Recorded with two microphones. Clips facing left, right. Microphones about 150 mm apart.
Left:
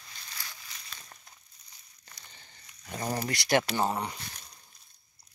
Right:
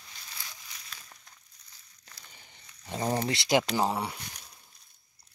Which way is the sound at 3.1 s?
25° right (ahead or behind).